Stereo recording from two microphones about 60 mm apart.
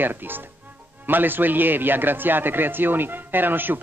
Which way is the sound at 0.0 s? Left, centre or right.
Right.